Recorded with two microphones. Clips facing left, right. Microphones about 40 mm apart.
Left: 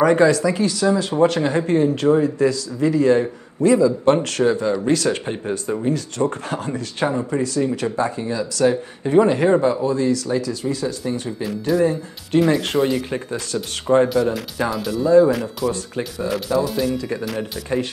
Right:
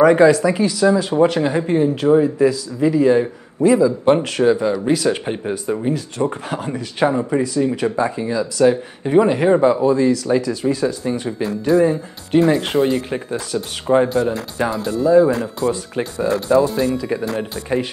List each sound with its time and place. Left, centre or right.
0.0 s a man's voice: centre
0.3 s a man's voice: right
11.4 s speech: right
11.8 s speech: right
12.4 s speech: right
13.1 s a man's voice: centre
14.0 s speech: right
15.0 s a man's voice: centre
16.0 s speech: right
17.0 s speech: centre